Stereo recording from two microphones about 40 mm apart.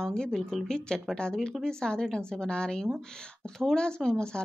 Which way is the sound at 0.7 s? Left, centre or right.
Centre.